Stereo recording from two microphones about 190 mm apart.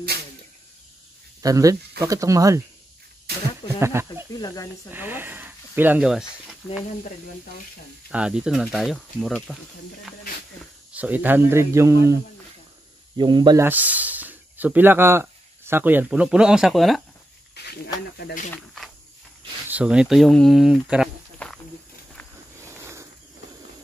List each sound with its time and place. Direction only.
1.4 s speech: 20° right (ahead or behind)
3.8 s speech: 15° right (ahead or behind)
4.3 s speech: 20° left (ahead or behind)
4.9 s speech: 10° right (ahead or behind)
8.1 s speech: 5° right (ahead or behind)
10.9 s speech: 10° right (ahead or behind)
13.2 s speech: 25° right (ahead or behind)
13.7 s speech: 10° right (ahead or behind)
17.6 s snake: 60° left (ahead or behind)
18.1 s speech: 55° left (ahead or behind)
19.7 s speech: 5° right (ahead or behind)
21.4 s wild animals: 5° left (ahead or behind)
22.6 s a sound: 15° right (ahead or behind)